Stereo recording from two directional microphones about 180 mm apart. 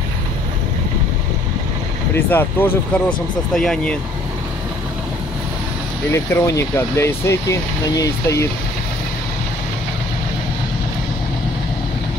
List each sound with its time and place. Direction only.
2.1 s speech: 10° left (ahead or behind)
6.1 s speech: 15° left (ahead or behind)